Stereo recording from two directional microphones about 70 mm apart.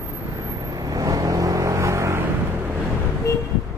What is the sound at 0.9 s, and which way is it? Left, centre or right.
Vehicle, right.